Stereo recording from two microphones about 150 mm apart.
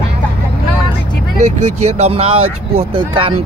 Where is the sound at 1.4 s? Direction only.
50° right (ahead or behind).